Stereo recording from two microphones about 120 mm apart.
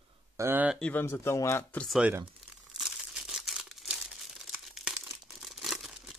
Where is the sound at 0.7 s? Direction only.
10° left (ahead or behind).